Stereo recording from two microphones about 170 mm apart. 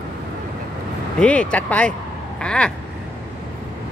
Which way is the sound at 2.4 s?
5° left (ahead or behind).